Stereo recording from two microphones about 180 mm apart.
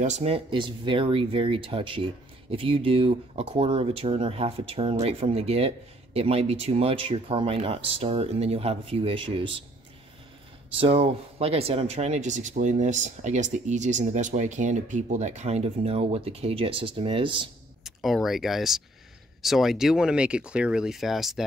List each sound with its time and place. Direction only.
0.0 s speech: 40° right (ahead or behind)
10.8 s speech: 35° right (ahead or behind)
17.8 s speech: centre (ahead or behind)